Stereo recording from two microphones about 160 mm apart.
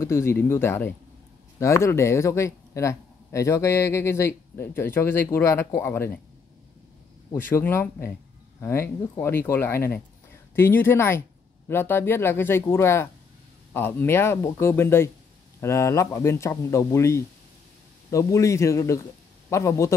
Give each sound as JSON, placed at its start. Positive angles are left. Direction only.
{"t": 0.0, "sound": "speech", "side_deg": 15}
{"t": 7.3, "sound": "speech", "side_deg": 15}